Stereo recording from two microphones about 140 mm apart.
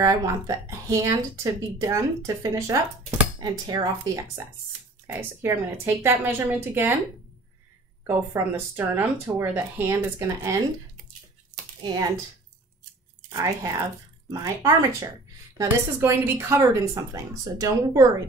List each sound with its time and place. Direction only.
0.0 s speech: 25° right (ahead or behind)
5.0 s speech: 20° right (ahead or behind)
8.1 s speech: 20° right (ahead or behind)
11.8 s speech: 30° right (ahead or behind)
13.3 s speech: 25° right (ahead or behind)